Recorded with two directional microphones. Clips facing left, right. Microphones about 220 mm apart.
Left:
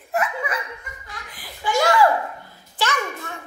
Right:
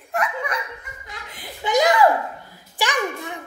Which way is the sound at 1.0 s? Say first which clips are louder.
Right 5 dB; 20° right (ahead or behind).